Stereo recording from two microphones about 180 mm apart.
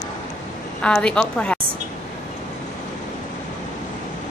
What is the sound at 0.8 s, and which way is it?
Speech, 5° left (ahead or behind).